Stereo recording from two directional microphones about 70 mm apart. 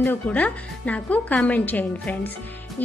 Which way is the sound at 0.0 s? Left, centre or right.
Left.